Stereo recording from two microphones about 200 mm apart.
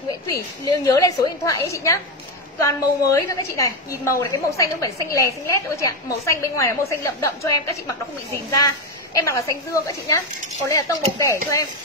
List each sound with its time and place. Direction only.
0.3 s a woman's voice: 20° left (ahead or behind)